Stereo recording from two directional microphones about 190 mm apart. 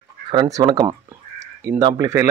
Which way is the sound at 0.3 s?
20° right (ahead or behind).